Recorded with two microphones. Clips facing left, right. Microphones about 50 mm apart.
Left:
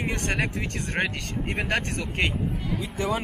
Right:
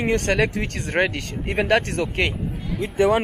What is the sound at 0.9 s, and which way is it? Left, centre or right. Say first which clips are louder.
Speech: right 7 dB; right.